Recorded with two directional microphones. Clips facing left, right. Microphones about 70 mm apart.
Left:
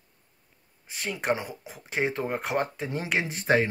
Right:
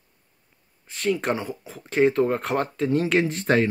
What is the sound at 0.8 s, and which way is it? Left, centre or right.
Speech, centre.